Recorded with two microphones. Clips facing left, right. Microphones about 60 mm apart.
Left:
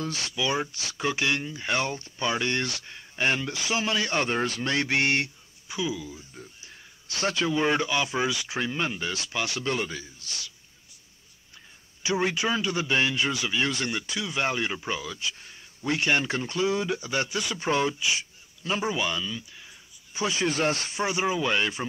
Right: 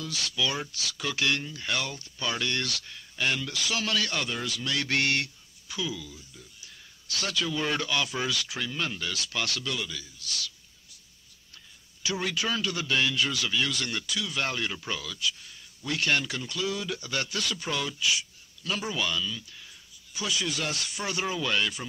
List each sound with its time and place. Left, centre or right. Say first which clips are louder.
0.0 s a man's voice: left 2 dB; left
4.8 s a man's voice: even; left
9.6 s speech: left 5 dB; left
12.0 s a man's voice: left 4 dB; left